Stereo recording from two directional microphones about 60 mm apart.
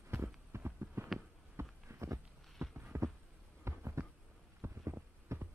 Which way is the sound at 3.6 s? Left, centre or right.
Right.